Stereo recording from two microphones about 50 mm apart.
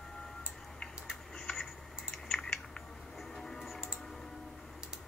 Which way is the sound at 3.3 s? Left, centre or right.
Centre.